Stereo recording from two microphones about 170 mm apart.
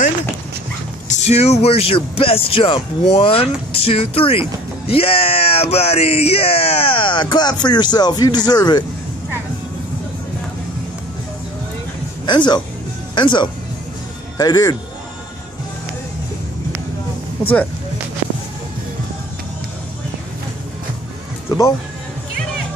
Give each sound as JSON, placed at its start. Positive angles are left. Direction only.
{"t": 1.0, "sound": "speech", "side_deg": 40}
{"t": 12.3, "sound": "speech", "side_deg": 25}
{"t": 21.5, "sound": "speech", "side_deg": 15}